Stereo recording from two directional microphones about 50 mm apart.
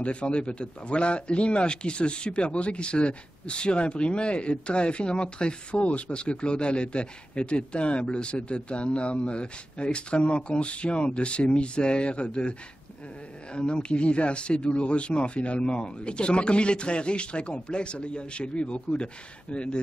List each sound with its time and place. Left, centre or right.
0.0 s a man's voice: left